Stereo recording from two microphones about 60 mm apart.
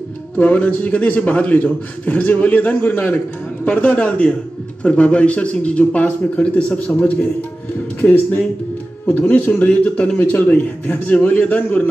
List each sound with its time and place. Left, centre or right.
0.4 s a man's voice: left